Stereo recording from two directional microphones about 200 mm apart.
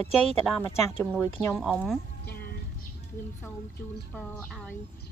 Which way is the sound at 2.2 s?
50° left (ahead or behind).